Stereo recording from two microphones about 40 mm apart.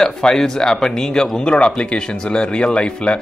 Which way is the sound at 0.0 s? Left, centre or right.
Centre.